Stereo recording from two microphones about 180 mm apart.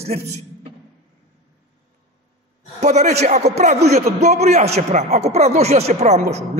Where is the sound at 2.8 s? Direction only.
40° right (ahead or behind).